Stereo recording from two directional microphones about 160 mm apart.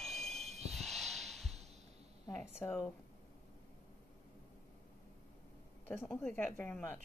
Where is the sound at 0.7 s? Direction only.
Centre (ahead or behind).